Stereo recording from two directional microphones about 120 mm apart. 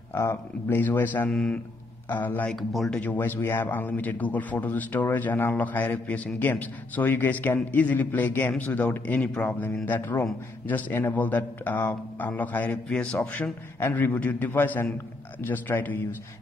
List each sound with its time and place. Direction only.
0.1 s a man's voice: 20° left (ahead or behind)
2.5 s speech: centre (ahead or behind)
3.0 s a man's voice: 15° left (ahead or behind)